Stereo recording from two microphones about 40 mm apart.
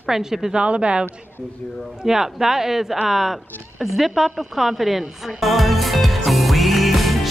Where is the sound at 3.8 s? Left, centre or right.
Centre.